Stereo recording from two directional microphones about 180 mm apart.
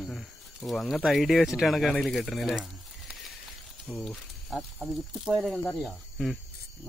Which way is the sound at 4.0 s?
Centre (ahead or behind).